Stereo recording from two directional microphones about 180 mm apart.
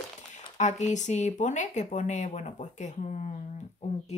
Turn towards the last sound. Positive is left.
turn(degrees=40)  # may be behind; listen again after turning